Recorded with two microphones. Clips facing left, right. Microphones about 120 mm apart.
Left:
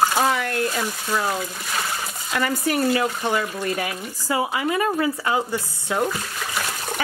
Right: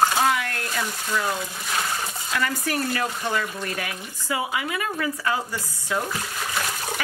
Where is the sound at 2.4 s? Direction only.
20° left (ahead or behind).